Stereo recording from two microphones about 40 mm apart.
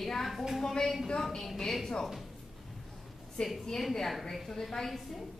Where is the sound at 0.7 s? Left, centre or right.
Centre.